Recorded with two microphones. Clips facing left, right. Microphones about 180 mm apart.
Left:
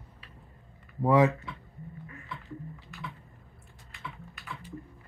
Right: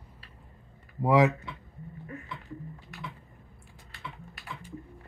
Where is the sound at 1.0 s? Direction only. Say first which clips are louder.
Even; 10° right (ahead or behind).